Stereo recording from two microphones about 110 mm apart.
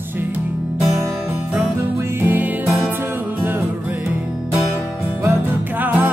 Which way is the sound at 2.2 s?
15° right (ahead or behind).